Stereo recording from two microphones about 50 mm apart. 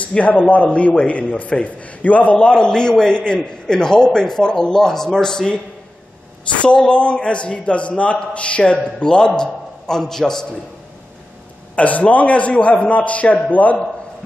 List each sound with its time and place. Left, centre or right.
0.0 s a man's voice: left
2.3 s a man's voice: centre
6.6 s a man's voice: left
11.7 s a man's voice: left